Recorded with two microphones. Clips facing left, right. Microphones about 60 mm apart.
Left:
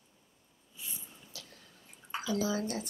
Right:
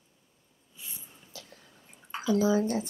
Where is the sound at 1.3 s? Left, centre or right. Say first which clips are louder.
Right 5 dB; right.